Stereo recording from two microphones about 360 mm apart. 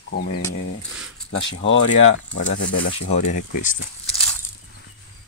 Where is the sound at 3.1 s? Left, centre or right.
Centre.